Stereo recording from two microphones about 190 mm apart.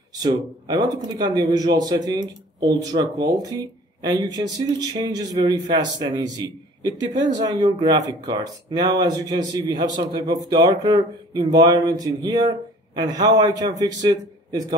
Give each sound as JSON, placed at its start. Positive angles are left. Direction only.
{"t": 0.2, "sound": "a man's voice", "side_deg": -20}